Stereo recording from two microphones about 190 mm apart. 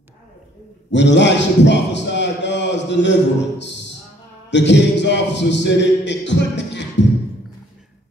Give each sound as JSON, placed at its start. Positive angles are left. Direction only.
{"t": 0.9, "sound": "a man's voice", "side_deg": 70}